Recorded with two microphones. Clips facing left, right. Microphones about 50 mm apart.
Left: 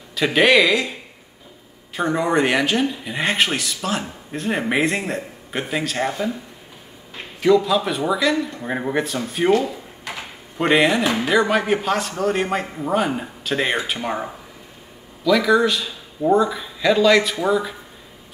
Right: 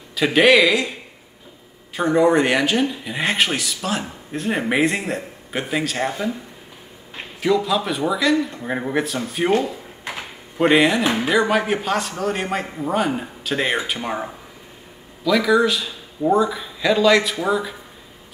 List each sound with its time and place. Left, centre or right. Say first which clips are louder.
0.1 s speech: right 1 dB; centre
2.0 s speech: right 3 dB; centre
7.4 s speech: left 3 dB; centre
10.6 s speech: right 1 dB; centre